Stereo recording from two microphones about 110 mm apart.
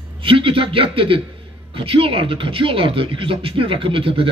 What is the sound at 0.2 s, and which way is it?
Speech, 50° right (ahead or behind).